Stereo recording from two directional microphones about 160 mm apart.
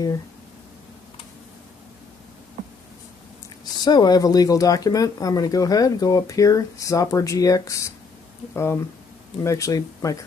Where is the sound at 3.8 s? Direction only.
25° left (ahead or behind).